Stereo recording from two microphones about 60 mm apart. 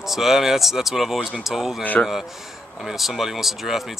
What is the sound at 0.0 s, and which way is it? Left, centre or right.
Speech, centre.